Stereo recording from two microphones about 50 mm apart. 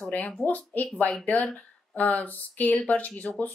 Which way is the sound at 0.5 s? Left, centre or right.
Left.